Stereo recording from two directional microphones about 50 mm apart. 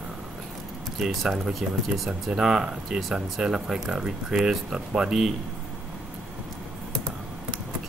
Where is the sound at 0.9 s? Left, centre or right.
Centre.